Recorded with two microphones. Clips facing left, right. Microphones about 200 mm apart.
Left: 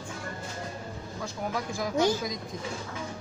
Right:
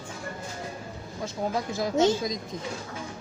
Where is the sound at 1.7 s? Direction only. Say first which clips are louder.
Right 3 dB; 25° right (ahead or behind).